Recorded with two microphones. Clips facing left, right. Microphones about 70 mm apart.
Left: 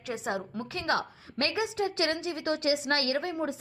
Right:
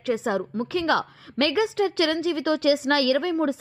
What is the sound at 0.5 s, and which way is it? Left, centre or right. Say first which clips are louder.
Speech: right 8 dB; right.